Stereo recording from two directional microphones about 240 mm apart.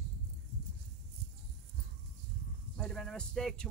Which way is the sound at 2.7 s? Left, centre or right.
Centre.